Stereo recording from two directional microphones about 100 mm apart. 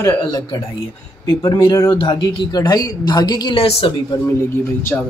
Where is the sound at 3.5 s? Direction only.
80° left.